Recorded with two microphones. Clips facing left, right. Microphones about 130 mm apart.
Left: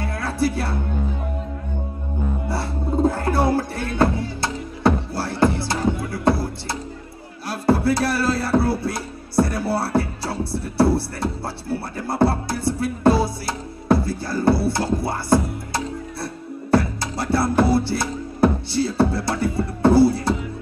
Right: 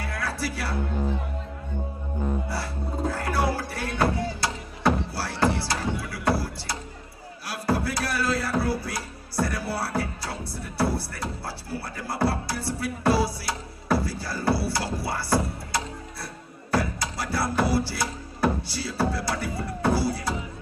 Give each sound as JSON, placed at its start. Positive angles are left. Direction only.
{"t": 0.0, "sound": "music", "side_deg": 25}
{"t": 2.5, "sound": "music", "side_deg": 25}